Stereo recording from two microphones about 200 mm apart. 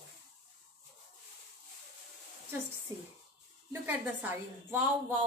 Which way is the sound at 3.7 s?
10° right (ahead or behind).